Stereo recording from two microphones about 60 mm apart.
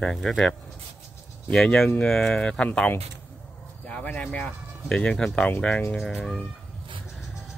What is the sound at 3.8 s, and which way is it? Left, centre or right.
Speech, left.